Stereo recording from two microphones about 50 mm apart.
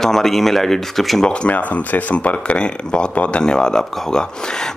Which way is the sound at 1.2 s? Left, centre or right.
Centre.